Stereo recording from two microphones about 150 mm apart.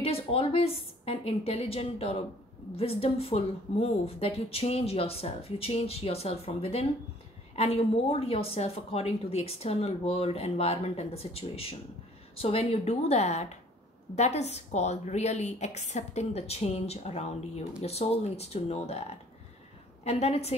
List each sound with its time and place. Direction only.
0.0 s a woman's voice: 40° left (ahead or behind)